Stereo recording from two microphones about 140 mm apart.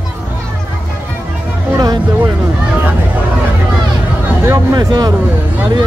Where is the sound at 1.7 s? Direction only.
30° right (ahead or behind).